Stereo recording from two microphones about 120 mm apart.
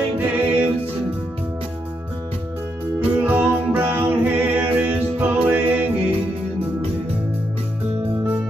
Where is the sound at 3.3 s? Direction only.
15° right (ahead or behind).